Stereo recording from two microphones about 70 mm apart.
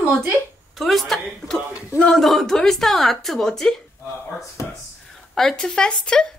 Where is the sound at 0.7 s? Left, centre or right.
Centre.